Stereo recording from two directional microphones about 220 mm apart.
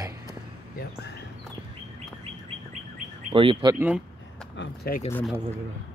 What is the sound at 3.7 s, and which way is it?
Speech, 5° right (ahead or behind).